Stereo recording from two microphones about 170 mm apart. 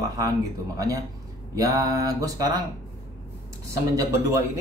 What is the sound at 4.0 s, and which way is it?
Speech, 15° right (ahead or behind).